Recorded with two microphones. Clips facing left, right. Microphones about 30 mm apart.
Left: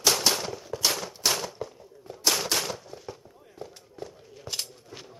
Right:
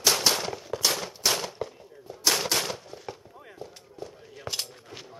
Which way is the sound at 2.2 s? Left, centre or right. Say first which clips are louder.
Right 1 dB; centre.